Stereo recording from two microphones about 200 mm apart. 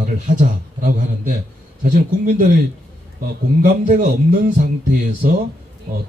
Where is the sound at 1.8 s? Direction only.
45° right (ahead or behind).